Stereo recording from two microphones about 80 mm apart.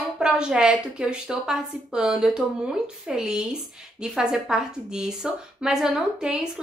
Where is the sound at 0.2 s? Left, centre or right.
Centre.